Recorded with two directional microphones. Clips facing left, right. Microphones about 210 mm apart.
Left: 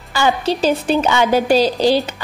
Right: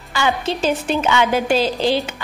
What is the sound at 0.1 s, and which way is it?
Speech, 35° left (ahead or behind).